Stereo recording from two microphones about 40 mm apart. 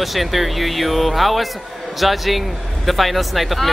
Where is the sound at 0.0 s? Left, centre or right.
Centre.